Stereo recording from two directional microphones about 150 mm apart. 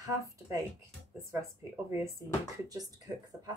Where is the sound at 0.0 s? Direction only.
20° right (ahead or behind).